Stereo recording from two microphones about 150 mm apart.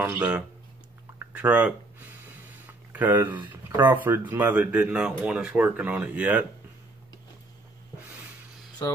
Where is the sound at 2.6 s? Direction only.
10° right (ahead or behind).